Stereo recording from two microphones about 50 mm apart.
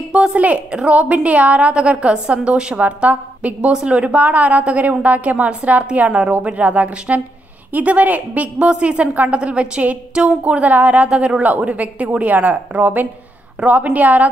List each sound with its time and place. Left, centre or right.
0.1 s a woman's voice: right